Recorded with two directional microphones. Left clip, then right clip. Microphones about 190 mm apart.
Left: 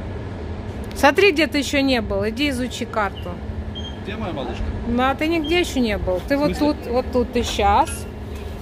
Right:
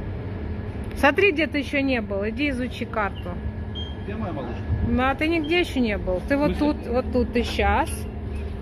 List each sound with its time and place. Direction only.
1.0 s speech: 20° left (ahead or behind)
4.9 s a woman's voice: 10° left (ahead or behind)